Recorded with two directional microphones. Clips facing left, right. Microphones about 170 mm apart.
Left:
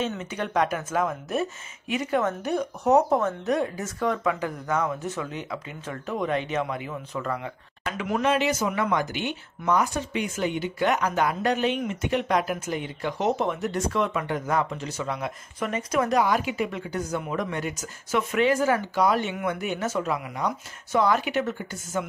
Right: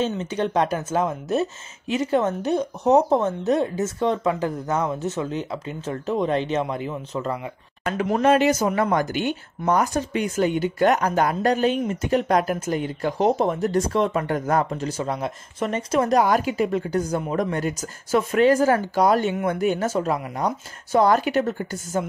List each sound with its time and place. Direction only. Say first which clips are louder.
0.2 s speech: right 4 dB; 30° right (ahead or behind)
7.8 s speech: right 5 dB; 45° right (ahead or behind)
14.2 s speech: right 4 dB; 45° right (ahead or behind)